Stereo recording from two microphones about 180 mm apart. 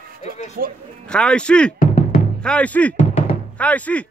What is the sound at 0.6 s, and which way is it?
Speech, 55° right (ahead or behind).